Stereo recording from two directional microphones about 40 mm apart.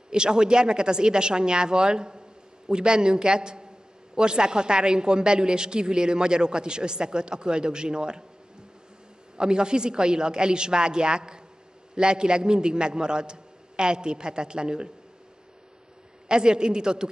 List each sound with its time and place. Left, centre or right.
0.1 s a man's voice: right
9.4 s a man's voice: right
16.3 s a man's voice: right